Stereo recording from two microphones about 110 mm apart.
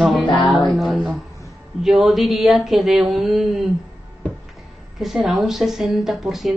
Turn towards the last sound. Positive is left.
turn(degrees=0)  # may be behind; listen again after turning